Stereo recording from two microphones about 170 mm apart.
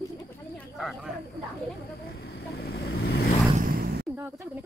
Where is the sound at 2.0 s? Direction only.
85° left; by 3.3 s 70° left (ahead or behind).